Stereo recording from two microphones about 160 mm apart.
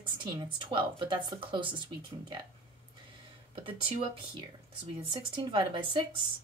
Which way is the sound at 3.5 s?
35° right (ahead or behind).